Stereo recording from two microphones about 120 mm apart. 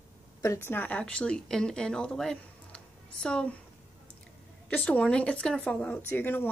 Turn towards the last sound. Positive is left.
turn(degrees=15)  # may be behind; listen again after turning